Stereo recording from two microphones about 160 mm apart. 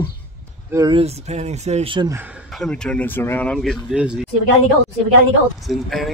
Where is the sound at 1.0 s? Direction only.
45° right (ahead or behind).